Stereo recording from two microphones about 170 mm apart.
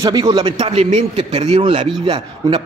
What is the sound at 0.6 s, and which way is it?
A man's voice, 40° right (ahead or behind).